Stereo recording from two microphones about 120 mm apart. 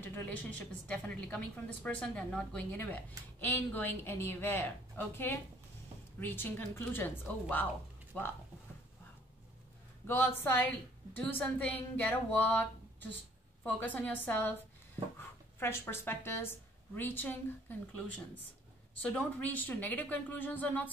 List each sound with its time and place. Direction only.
0.0 s a woman's voice: 15° left (ahead or behind)
10.0 s a woman's voice: 20° left (ahead or behind)
15.6 s a woman's voice: 20° left (ahead or behind)